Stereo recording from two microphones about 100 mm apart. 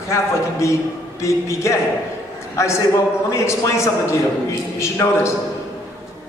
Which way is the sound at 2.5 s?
30° left (ahead or behind).